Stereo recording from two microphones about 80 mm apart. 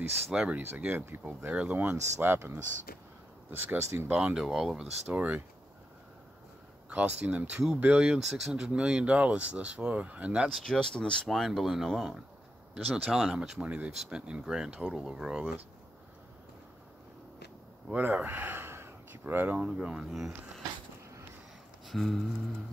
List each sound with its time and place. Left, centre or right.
0.3 s speech: centre
0.6 s speech: right
1.5 s speech: centre
1.8 s speech: right
3.5 s speech: right
4.1 s speech: centre
5.0 s speech: centre
6.9 s speech: centre
10.5 s speech: centre
12.7 s speech: centre
17.9 s speech: right; by 20.6 s centre
21.8 s music: centre